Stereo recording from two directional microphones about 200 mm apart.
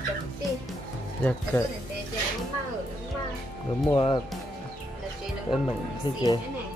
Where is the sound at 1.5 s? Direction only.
10° left (ahead or behind).